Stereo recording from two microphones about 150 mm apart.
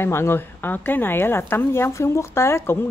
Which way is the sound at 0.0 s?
15° left (ahead or behind).